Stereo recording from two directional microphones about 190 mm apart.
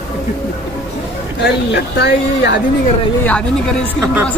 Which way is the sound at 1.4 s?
60° left (ahead or behind).